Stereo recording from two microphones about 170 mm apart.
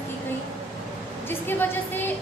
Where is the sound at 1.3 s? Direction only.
10° left (ahead or behind).